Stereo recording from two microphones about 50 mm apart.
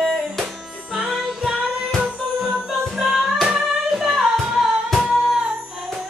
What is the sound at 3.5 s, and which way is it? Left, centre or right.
Singing, centre.